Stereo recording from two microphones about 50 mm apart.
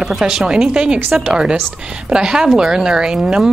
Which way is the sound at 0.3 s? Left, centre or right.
Centre.